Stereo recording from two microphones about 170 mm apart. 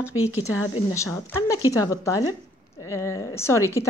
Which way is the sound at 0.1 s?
10° right (ahead or behind).